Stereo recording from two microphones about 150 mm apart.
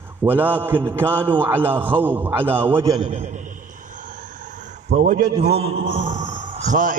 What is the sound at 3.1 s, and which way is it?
Speech, 50° right (ahead or behind).